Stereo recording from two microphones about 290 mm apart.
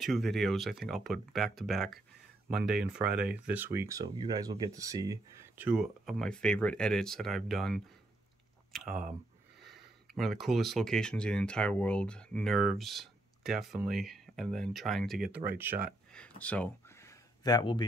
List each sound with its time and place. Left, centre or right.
0.0 s speech: centre
16.2 s speech: centre